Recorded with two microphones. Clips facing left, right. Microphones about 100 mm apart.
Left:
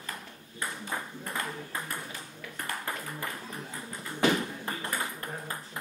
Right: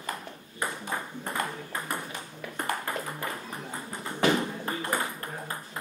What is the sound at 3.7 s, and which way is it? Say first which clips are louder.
Tap: right 3 dB; 30° right (ahead or behind).